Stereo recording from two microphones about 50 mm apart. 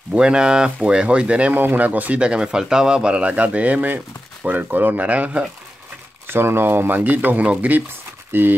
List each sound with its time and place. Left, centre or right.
0.1 s speech: centre
1.5 s speech: right
1.8 s speech: right
6.2 s speech: right
7.0 s speech: right
8.3 s speech: right